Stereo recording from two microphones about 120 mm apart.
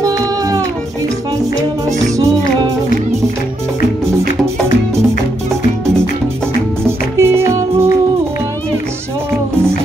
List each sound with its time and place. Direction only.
0.0 s music: 30° right (ahead or behind)
6.8 s music: 20° right (ahead or behind)